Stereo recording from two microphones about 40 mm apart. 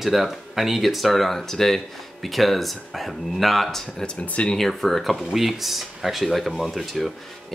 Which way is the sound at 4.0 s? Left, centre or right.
Left.